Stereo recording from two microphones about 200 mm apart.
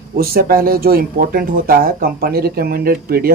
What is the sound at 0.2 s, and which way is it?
Speech, 50° right (ahead or behind).